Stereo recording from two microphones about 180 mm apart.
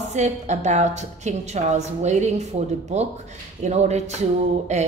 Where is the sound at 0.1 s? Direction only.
40° right (ahead or behind).